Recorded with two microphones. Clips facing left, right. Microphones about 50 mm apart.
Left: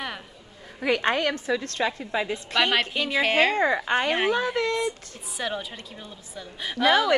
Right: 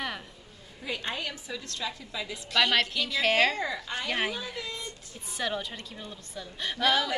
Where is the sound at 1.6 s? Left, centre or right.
Left.